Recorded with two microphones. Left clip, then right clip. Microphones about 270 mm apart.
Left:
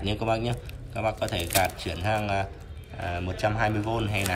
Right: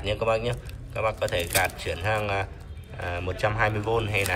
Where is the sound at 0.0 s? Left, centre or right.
Centre.